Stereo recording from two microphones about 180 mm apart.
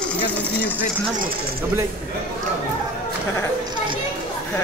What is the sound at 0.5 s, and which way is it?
Speech, 10° left (ahead or behind).